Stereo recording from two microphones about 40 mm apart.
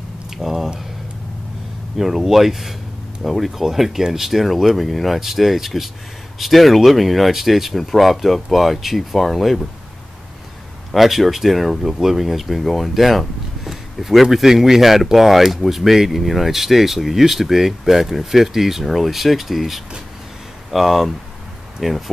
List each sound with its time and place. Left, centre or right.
0.4 s speech: centre
2.0 s speech: centre
10.9 s speech: centre